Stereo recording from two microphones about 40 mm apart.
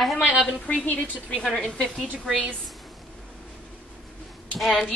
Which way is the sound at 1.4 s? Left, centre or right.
Centre.